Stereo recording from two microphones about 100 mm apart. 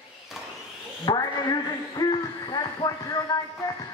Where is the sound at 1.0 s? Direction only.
40° left (ahead or behind).